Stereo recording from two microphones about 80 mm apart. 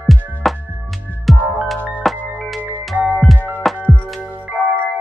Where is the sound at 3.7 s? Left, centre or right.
Centre.